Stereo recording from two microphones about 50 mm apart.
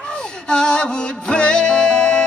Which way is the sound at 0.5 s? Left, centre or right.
Centre.